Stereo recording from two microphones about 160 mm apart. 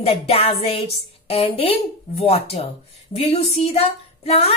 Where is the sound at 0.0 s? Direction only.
40° left (ahead or behind).